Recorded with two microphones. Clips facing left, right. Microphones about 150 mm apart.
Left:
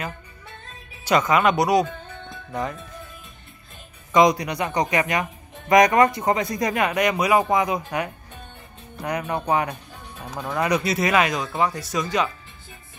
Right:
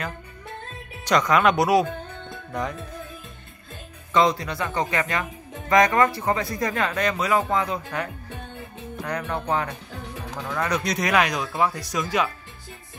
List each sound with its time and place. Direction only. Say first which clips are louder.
1.0 s speech: left 1 dB; 5° left (ahead or behind)
4.1 s speech: left 3 dB; 15° left (ahead or behind)